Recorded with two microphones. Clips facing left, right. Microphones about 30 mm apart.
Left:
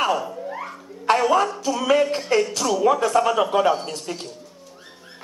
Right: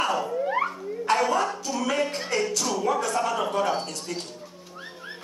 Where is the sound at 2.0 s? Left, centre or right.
Centre.